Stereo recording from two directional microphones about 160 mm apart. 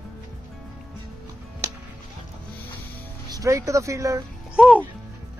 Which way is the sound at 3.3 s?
20° right (ahead or behind).